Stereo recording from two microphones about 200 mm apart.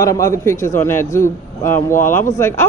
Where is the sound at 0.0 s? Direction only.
15° left (ahead or behind).